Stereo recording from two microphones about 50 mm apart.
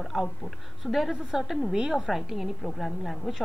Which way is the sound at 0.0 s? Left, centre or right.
Centre.